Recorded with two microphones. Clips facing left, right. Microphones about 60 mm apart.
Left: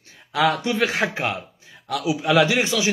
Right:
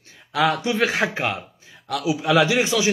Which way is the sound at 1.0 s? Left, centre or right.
Centre.